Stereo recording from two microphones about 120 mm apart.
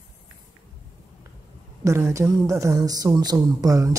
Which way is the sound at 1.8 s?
25° right (ahead or behind).